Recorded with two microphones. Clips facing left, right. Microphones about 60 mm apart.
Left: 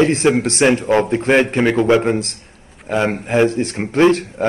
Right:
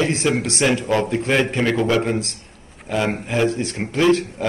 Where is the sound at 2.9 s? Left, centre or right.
Left.